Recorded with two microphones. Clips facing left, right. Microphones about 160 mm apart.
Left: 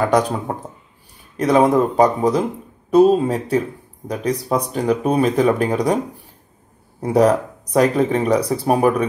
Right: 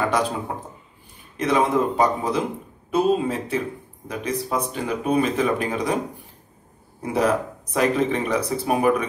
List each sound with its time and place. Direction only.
0.5 s speech: 50° left (ahead or behind)
7.0 s speech: 40° left (ahead or behind)